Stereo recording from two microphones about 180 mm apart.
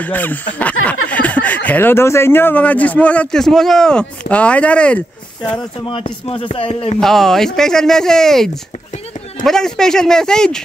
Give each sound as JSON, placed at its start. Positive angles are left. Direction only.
{"t": 0.0, "sound": "speech", "side_deg": 10}
{"t": 5.9, "sound": "speech", "side_deg": 30}
{"t": 7.0, "sound": "speech", "side_deg": 0}